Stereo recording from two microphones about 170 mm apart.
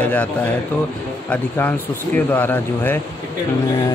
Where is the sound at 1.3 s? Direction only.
10° left (ahead or behind).